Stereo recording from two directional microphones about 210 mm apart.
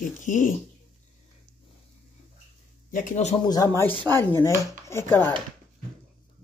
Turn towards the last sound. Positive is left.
turn(degrees=10)  # may be behind; listen again after turning